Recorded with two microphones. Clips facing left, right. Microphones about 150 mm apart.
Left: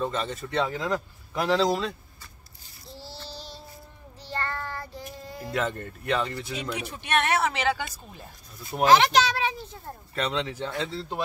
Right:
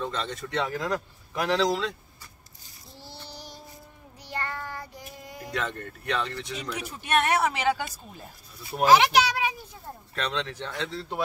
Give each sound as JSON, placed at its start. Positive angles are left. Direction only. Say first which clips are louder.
{"t": 0.0, "sound": "speech", "louder": "left 3 dB", "side_deg": 5}
{"t": 3.0, "sound": "child singing", "louder": "left 2 dB", "side_deg": -15}
{"t": 5.4, "sound": "speech", "louder": "left 3 dB", "side_deg": 5}
{"t": 7.2, "sound": "speech", "louder": "right 1 dB", "side_deg": -10}
{"t": 10.1, "sound": "speech", "louder": "left 2 dB", "side_deg": 10}